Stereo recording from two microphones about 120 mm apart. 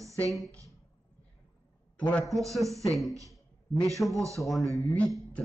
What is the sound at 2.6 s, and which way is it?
Speech, 25° right (ahead or behind).